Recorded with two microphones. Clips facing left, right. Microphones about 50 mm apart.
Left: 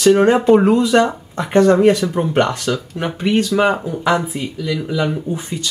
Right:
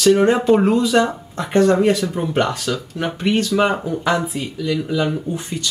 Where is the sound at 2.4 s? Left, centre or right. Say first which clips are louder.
Left 2 dB; centre.